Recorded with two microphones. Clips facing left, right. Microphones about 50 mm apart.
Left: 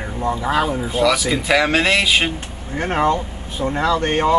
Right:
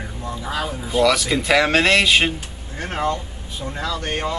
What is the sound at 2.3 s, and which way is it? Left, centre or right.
Speech, left.